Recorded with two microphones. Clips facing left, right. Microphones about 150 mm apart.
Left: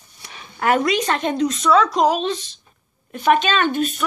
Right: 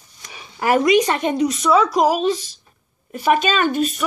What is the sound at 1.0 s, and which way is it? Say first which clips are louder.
A woman's voice: right 1 dB; 10° right (ahead or behind).